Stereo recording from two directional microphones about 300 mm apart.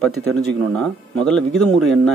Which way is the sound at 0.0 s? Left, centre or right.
Centre.